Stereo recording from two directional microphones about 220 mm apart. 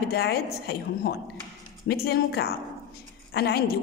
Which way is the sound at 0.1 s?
45° left (ahead or behind).